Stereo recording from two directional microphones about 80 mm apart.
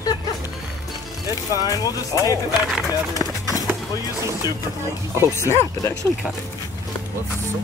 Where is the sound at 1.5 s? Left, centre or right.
Left.